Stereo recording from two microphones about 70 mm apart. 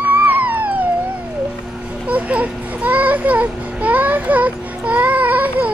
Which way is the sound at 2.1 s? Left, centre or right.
Right.